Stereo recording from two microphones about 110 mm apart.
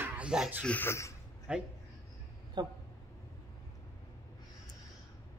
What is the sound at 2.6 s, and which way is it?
Speech, 40° right (ahead or behind).